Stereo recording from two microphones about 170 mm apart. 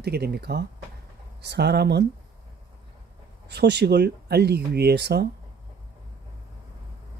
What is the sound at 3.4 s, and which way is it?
Speech, 85° right.